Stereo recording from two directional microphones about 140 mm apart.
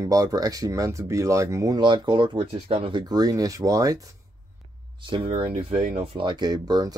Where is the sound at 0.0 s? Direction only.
25° right (ahead or behind).